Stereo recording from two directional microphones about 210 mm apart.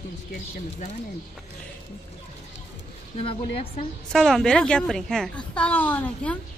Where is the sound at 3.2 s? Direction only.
30° left (ahead or behind).